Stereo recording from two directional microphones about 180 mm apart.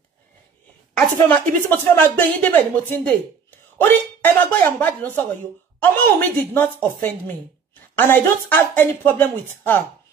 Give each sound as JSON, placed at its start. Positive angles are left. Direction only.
{"t": 0.9, "sound": "speech", "side_deg": 5}
{"t": 7.9, "sound": "speech", "side_deg": 10}